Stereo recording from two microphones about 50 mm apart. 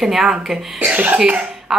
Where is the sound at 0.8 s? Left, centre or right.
Right.